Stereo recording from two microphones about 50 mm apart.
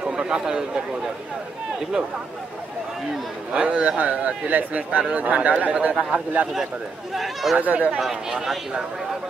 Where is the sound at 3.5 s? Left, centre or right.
Right.